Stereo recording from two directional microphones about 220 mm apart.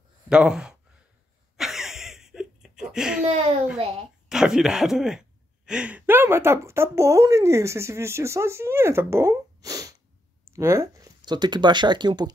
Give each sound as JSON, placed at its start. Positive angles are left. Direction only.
{"t": 0.3, "sound": "speech", "side_deg": -5}
{"t": 1.6, "sound": "a sound", "side_deg": 0}
{"t": 3.3, "sound": "a child's voice", "side_deg": -30}
{"t": 4.3, "sound": "speech", "side_deg": -5}